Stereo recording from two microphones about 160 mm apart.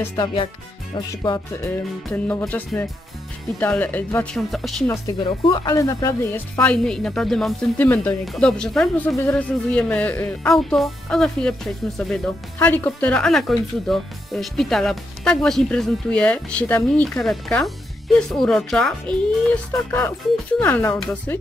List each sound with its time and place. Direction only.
0.2 s speech: 30° left (ahead or behind)
0.9 s music: 25° left (ahead or behind)
2.0 s a woman's voice: 10° left (ahead or behind)
5.7 s a woman's voice: 20° left (ahead or behind)